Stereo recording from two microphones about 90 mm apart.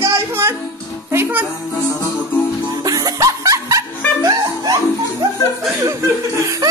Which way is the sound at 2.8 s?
40° right (ahead or behind).